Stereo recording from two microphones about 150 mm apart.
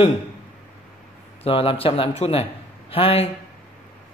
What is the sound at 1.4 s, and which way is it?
Speech, 40° left (ahead or behind).